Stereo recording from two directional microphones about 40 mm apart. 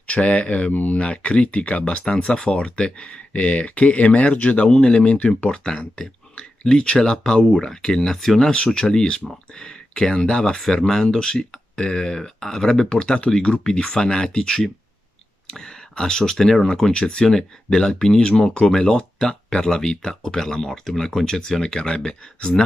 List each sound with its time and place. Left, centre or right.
0.0 s speech: left
1.1 s speech: left; by 8.5 s centre
8.5 s speech: left